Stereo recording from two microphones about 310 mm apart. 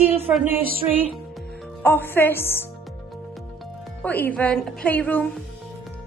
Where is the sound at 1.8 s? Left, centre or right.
Centre.